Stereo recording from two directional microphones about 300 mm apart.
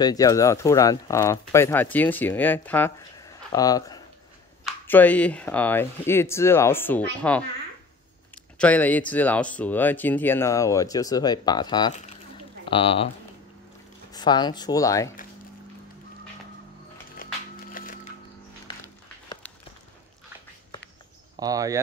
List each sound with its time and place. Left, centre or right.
0.0 s speech: centre
8.5 s speech: centre
14.1 s speech: centre
17.2 s music: left
21.4 s speech: centre